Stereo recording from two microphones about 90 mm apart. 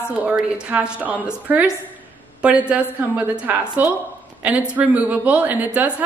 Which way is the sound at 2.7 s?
15° right (ahead or behind).